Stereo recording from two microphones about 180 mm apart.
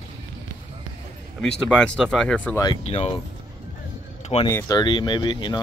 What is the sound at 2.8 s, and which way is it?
Speech, 35° left (ahead or behind).